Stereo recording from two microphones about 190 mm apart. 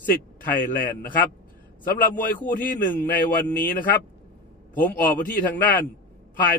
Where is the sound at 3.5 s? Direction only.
50° left (ahead or behind).